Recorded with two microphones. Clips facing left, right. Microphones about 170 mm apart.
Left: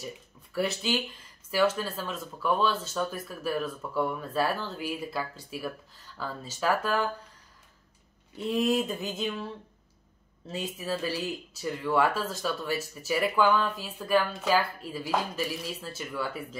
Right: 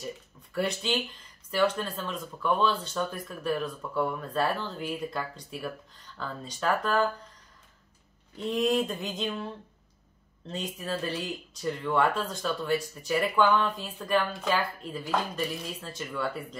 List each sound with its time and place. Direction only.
0.0 s speech: centre (ahead or behind)
8.4 s speech: 5° left (ahead or behind)
10.4 s speech: 5° left (ahead or behind)